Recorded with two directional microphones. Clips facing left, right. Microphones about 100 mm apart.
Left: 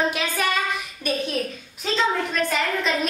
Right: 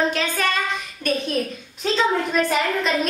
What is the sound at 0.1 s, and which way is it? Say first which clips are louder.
A woman's voice: right 1 dB; 10° left (ahead or behind).